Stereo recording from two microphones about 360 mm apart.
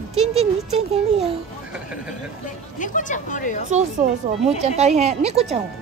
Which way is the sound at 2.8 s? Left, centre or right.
Left.